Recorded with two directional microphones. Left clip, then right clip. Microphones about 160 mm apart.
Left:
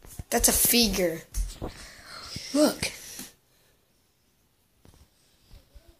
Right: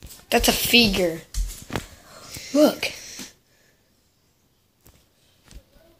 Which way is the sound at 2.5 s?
5° right (ahead or behind).